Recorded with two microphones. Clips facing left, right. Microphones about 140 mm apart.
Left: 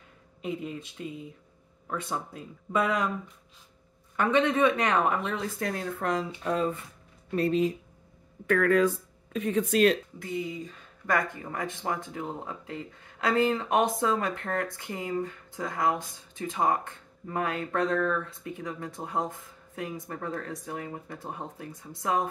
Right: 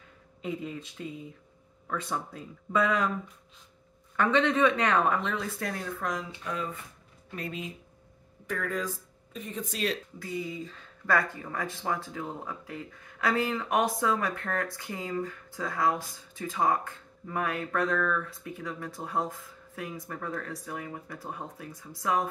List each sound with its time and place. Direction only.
0.4 s speech: 20° left (ahead or behind)
4.2 s a man's voice: 15° left (ahead or behind)
6.4 s speech: 30° left (ahead or behind)
8.5 s speech: 75° left (ahead or behind)
10.1 s speech: 20° left (ahead or behind)